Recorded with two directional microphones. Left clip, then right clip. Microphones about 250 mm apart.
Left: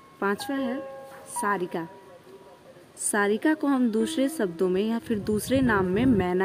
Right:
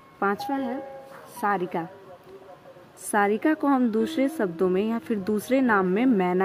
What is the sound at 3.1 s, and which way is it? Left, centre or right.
A woman's voice, centre.